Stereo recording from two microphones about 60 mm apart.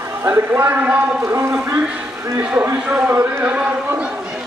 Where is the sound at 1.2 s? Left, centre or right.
Right.